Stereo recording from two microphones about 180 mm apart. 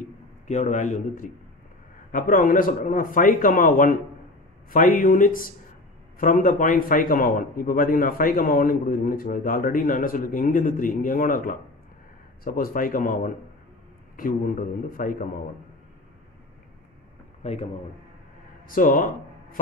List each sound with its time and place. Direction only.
0.5 s a man's voice: 40° left (ahead or behind)
17.4 s a man's voice: 35° left (ahead or behind)
18.7 s a man's voice: 50° left (ahead or behind)